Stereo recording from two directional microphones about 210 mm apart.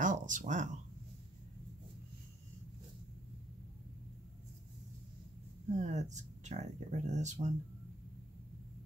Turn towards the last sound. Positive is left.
turn(degrees=-35)  # may be behind; listen again after turning